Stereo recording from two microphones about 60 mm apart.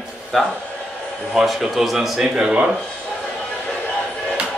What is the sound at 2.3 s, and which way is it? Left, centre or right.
Speech, centre.